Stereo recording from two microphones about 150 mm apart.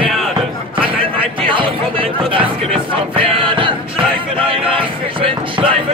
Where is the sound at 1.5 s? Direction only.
35° right (ahead or behind).